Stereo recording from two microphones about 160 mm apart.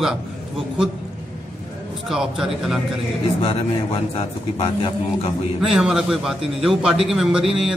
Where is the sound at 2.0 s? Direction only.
Centre (ahead or behind).